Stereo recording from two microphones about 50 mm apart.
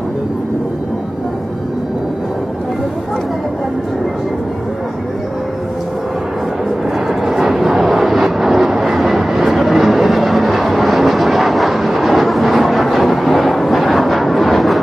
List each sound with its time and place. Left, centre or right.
7.1 s vehicle: centre